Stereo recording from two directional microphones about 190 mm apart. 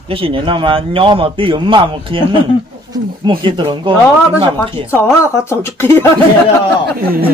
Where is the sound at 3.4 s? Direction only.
25° right (ahead or behind).